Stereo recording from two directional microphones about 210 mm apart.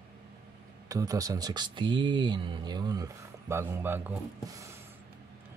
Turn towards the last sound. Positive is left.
turn(degrees=-15)  # may be behind; listen again after turning